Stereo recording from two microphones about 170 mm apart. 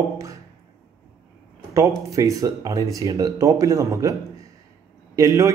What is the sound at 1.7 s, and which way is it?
A man's voice, 20° right (ahead or behind).